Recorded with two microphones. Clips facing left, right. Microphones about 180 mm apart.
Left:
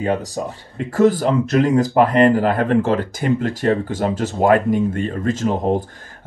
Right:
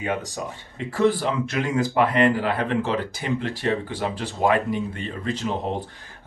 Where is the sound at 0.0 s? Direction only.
40° left (ahead or behind).